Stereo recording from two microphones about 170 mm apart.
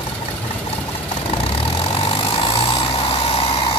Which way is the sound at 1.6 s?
35° left (ahead or behind).